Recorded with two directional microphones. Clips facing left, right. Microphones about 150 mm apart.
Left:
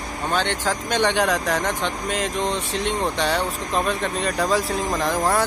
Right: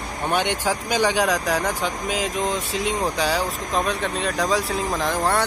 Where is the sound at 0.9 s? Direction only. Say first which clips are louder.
Even; centre (ahead or behind).